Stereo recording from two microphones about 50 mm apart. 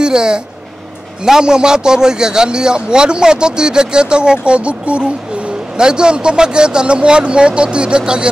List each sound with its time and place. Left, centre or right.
0.0 s a man's voice: centre